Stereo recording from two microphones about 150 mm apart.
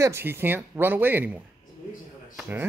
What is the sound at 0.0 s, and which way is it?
Speech, 15° right (ahead or behind).